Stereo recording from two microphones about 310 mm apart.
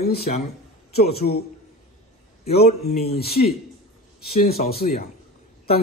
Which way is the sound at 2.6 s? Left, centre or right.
Left.